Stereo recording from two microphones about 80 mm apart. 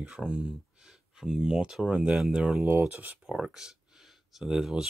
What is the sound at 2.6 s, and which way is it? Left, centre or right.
Speech, right.